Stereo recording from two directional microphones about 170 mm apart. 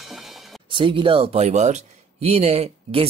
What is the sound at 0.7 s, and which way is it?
Speech, 30° right (ahead or behind).